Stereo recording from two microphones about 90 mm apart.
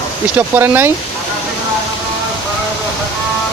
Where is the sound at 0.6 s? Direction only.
25° right (ahead or behind).